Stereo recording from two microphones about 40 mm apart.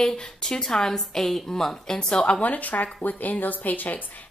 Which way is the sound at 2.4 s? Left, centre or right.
Left.